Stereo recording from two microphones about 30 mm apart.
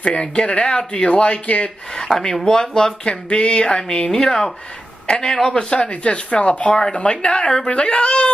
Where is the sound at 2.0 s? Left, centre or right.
Centre.